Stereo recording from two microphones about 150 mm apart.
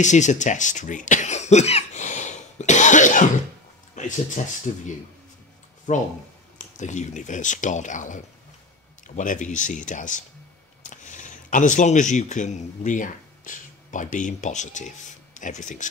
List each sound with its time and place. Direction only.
0.0 s speech: 55° left (ahead or behind)
4.0 s a sound: 55° left (ahead or behind)
4.7 s speech: 55° left (ahead or behind)
5.9 s speech: 55° left (ahead or behind)